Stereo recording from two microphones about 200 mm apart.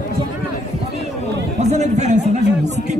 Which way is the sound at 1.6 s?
35° right (ahead or behind).